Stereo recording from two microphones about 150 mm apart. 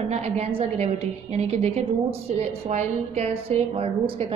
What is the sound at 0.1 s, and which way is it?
A woman's voice, 40° right (ahead or behind).